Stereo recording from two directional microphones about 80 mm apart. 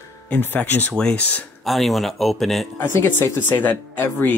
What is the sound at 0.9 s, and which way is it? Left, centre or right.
Speech, centre.